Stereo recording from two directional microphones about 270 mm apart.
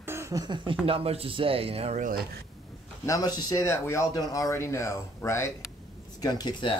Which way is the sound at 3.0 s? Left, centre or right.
Centre.